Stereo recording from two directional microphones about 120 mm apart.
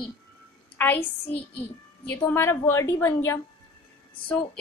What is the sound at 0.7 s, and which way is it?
Speech, 15° left (ahead or behind).